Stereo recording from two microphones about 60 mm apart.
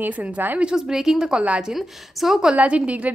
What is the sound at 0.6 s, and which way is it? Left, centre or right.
A woman's voice, centre.